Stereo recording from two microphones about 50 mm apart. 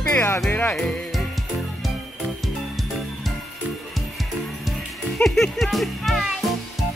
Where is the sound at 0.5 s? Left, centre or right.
Left.